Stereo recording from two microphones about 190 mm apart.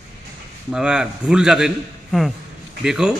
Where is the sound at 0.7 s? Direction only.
5° right (ahead or behind).